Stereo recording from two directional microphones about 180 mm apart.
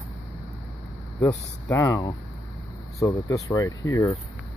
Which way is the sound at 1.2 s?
15° left (ahead or behind).